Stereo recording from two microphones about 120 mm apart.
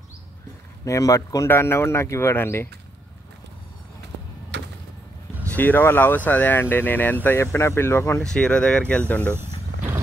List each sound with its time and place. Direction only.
0.8 s speech: 25° left (ahead or behind)
5.5 s speech: 15° left (ahead or behind)
8.2 s speech: 10° left (ahead or behind)
9.3 s vehicle: 20° right (ahead or behind)